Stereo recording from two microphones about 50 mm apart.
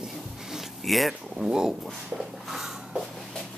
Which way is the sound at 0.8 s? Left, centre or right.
Centre.